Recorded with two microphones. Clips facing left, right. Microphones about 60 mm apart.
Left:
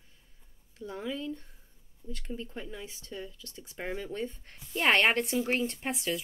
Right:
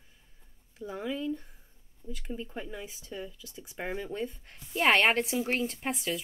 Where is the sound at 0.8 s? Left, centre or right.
Centre.